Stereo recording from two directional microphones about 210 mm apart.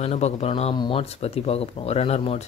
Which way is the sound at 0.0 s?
30° left (ahead or behind).